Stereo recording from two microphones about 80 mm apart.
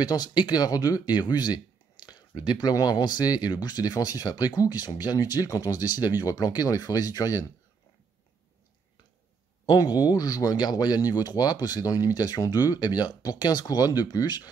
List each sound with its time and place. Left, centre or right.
0.0 s speech: left
9.7 s speech: left